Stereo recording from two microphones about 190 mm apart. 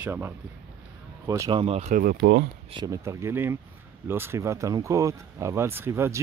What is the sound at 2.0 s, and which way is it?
Speech, 50° right (ahead or behind).